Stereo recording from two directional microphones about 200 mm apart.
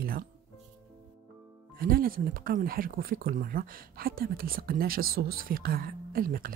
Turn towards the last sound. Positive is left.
turn(degrees=-45)  # may be behind; listen again after turning